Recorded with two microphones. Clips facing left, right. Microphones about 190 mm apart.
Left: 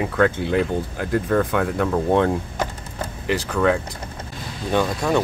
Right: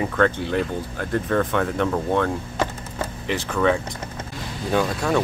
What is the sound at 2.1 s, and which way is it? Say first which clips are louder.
Speech: left 3 dB; 15° left (ahead or behind).